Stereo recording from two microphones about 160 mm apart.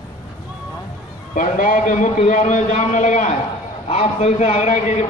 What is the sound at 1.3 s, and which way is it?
A man's voice, 60° left (ahead or behind).